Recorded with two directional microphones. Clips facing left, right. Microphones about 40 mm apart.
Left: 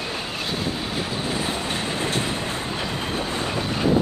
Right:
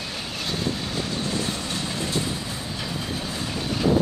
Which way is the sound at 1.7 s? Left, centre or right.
Left.